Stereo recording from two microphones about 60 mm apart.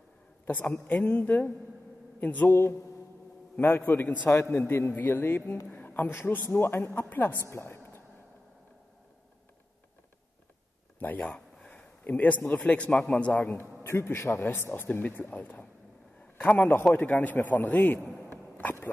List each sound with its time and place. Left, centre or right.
0.5 s a man's voice: left
2.5 s speech: left
7.4 s a sound: left
11.0 s speech: left
11.2 s a sound: centre
11.7 s a man's voice: left
13.5 s speech: left
16.3 s a sound: left
16.9 s a man's voice: left